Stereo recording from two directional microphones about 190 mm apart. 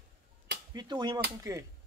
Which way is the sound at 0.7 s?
20° right (ahead or behind).